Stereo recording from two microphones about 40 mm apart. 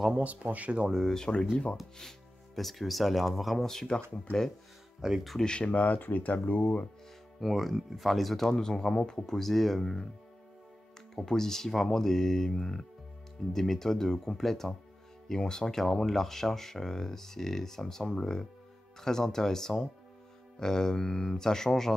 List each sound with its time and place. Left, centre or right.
0.2 s speech: right
1.3 s speech: left
2.0 s speech: centre
5.0 s speech: centre
5.4 s speech: left
5.7 s speech: left
7.3 s speech: centre
11.1 s speech: centre